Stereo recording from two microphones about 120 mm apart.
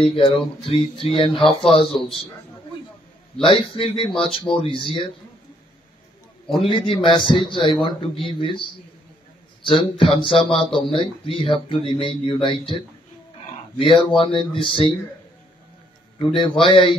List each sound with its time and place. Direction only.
0.0 s speech: 45° left (ahead or behind)
3.7 s speech: 45° left (ahead or behind)
6.4 s a man's voice: centre (ahead or behind)
7.0 s speech: 45° left (ahead or behind)
9.7 s speech: 45° left (ahead or behind)
13.7 s speech: 45° left (ahead or behind)
16.2 s speech: 45° left (ahead or behind)